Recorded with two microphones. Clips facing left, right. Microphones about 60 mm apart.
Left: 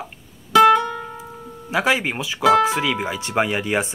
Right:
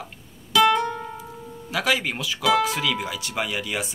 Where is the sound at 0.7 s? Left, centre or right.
Left.